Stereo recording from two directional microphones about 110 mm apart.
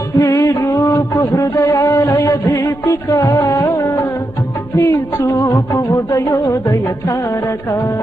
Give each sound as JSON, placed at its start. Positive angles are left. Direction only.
{"t": 0.2, "sound": "music", "side_deg": 25}